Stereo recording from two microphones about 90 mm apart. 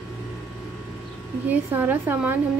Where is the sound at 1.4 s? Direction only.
20° right (ahead or behind).